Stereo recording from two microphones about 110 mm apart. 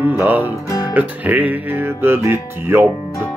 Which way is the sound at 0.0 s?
15° right (ahead or behind).